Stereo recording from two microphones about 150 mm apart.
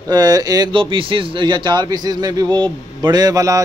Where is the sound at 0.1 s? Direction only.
25° right (ahead or behind).